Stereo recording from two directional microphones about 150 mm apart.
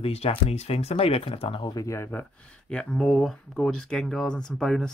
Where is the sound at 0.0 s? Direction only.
40° left (ahead or behind); by 2.0 s 25° left (ahead or behind).